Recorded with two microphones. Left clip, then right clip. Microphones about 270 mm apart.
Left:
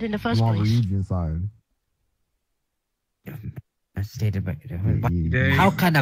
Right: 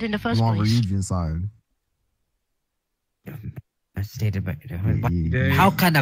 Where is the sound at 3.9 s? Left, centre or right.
Centre.